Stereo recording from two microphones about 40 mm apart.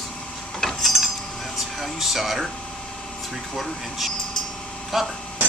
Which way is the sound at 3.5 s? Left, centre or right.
Centre.